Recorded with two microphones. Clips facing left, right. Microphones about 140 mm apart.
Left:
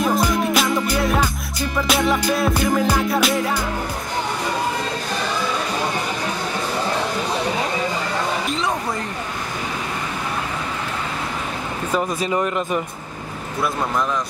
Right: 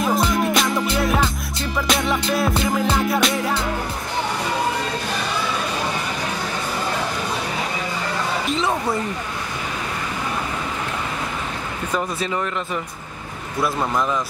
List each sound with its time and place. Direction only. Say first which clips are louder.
0.3 s music: left 1 dB; centre (ahead or behind)
2.5 s music: left 2 dB; 25° right (ahead or behind)
3.1 s music: left 1 dB; centre (ahead or behind)
8.5 s a sound: right 1 dB; centre (ahead or behind)
12.3 s speech: left 4 dB; 20° left (ahead or behind)